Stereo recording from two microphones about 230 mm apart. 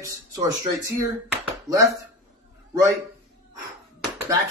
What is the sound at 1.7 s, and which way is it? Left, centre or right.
Speech, centre.